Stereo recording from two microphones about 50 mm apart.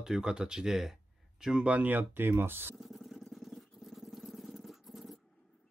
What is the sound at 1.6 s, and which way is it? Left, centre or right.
Speech, right.